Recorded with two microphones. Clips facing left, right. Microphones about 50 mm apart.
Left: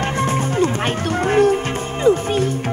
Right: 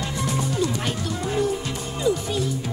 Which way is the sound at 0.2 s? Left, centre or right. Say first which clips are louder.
Left 5 dB; left.